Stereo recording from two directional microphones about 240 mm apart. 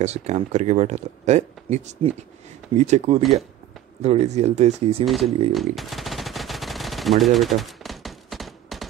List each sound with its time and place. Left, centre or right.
0.0 s speech: right
5.0 s speech: centre
5.5 s machine gun: centre